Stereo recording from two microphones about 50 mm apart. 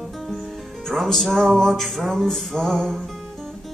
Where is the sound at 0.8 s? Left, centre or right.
Centre.